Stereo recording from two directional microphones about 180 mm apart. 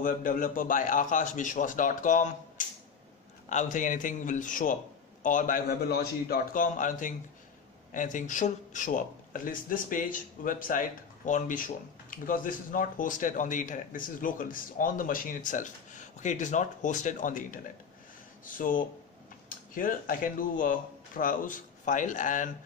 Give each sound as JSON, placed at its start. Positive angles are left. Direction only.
{"t": 0.0, "sound": "speech", "side_deg": 50}